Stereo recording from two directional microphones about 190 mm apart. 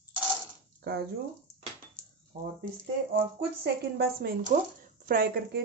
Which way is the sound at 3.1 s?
55° right (ahead or behind).